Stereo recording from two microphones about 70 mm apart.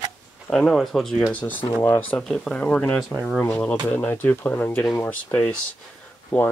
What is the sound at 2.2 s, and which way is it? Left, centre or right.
Speech, centre.